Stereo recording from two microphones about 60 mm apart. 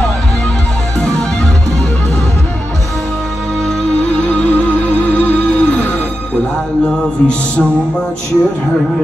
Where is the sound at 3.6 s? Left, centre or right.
Centre.